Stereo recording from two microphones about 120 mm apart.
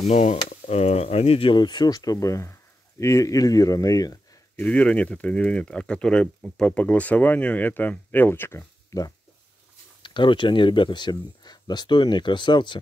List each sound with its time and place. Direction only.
0.0 s speech: 85° left; by 4.4 s 30° left (ahead or behind)
4.6 s speech: 10° left (ahead or behind)
10.0 s speech: 40° left (ahead or behind)